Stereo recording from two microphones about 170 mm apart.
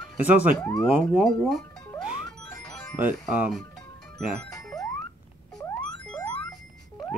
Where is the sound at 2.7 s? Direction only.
5° left (ahead or behind).